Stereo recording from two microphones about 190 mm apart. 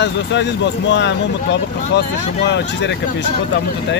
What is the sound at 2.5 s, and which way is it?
Speech, 65° left (ahead or behind).